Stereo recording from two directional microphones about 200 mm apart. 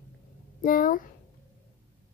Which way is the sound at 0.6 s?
45° left (ahead or behind).